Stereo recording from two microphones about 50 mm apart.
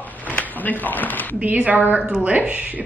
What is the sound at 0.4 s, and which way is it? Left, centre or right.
Speech, left.